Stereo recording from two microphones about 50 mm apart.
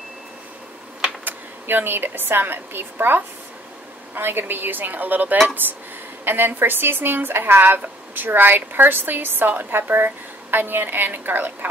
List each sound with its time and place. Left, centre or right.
1.2 s a woman's voice: right